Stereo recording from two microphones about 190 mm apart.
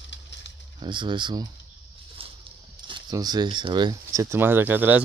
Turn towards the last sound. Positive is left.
turn(degrees=-10)  # may be behind; listen again after turning